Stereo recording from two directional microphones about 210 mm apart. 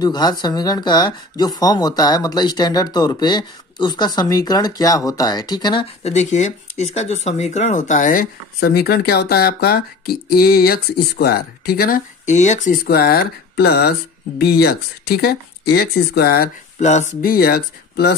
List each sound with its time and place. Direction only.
0.0 s speech: 20° left (ahead or behind); by 18.1 s 50° left (ahead or behind)